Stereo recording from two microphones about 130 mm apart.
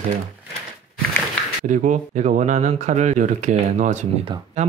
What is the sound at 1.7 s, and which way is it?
Speech, 70° right (ahead or behind).